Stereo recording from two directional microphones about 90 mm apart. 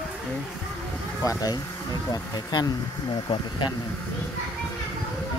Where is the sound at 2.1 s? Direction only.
50° left (ahead or behind).